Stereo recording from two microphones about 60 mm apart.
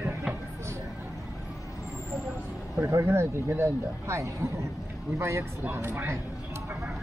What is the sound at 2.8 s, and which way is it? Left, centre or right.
Speech, right.